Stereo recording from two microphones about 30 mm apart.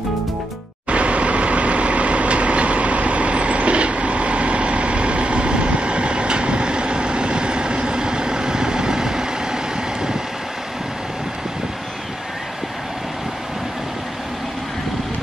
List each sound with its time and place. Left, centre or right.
0.8 s vehicle: right; by 9.6 s centre